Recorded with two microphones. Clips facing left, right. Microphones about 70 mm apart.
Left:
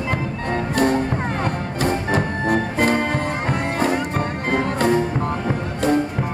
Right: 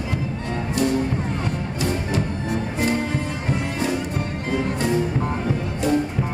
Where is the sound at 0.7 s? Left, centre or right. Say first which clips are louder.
Left 2 dB; left.